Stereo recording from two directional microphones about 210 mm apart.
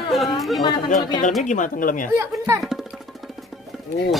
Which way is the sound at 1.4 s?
35° left (ahead or behind).